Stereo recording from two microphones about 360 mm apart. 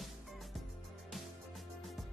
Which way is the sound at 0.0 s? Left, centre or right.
Centre.